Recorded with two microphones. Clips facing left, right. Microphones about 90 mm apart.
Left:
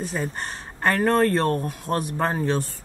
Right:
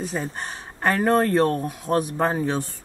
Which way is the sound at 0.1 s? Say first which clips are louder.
Even; 15° right (ahead or behind).